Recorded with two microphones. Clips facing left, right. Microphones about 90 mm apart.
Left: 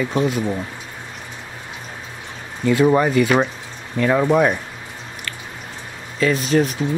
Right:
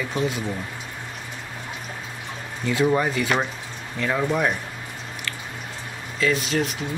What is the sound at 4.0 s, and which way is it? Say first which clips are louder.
Speech: left 7 dB; 65° left (ahead or behind).